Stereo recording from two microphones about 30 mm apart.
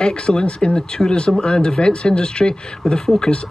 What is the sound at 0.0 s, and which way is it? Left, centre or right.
Speech, left.